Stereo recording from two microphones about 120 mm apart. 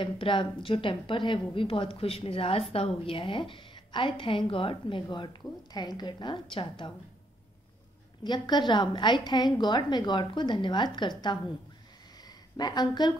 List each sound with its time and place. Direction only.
0.0 s a woman's voice: 45° left (ahead or behind)
8.2 s a woman's voice: 35° left (ahead or behind)
12.2 s a sound: 35° left (ahead or behind)